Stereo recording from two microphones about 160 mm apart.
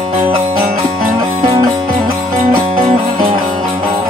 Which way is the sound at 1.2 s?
25° right (ahead or behind).